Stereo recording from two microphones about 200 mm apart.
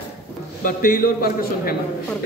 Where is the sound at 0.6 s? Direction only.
45° left (ahead or behind).